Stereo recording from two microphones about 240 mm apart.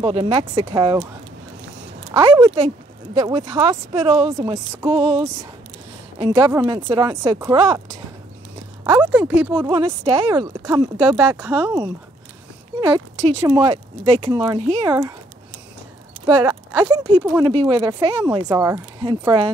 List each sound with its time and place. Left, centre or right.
0.0 s speech: right
2.1 s speech: centre
8.8 s speech: centre
9.6 s speech: centre
13.5 s speech: right
16.3 s speech: centre